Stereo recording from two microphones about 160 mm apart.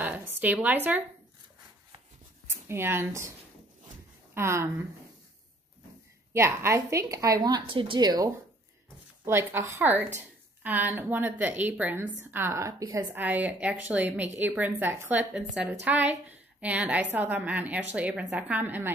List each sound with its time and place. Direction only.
0.0 s a woman's voice: 10° right (ahead or behind)
2.4 s speech: 15° right (ahead or behind)
4.3 s speech: 15° right (ahead or behind)
6.3 s a woman's voice: 15° right (ahead or behind)
9.2 s speech: 15° right (ahead or behind)